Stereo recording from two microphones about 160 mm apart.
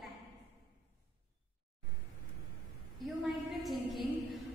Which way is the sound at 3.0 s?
Centre (ahead or behind).